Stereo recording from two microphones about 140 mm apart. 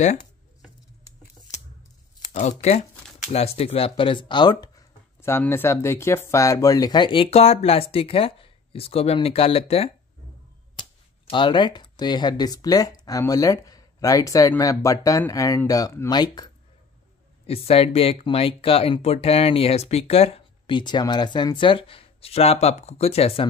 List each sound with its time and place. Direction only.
2.3 s speech: 55° left (ahead or behind); by 4.8 s 30° left (ahead or behind)
5.2 s speech: 15° left (ahead or behind)
17.5 s speech: 45° left (ahead or behind)